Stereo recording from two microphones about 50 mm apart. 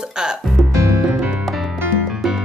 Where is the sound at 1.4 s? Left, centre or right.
Centre.